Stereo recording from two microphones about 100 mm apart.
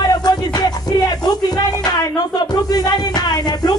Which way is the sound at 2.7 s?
40° left (ahead or behind).